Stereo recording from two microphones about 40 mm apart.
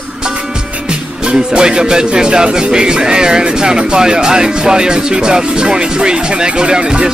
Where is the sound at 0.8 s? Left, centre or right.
Right.